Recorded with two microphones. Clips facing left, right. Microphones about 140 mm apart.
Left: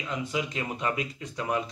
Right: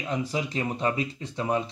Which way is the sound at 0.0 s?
35° right (ahead or behind).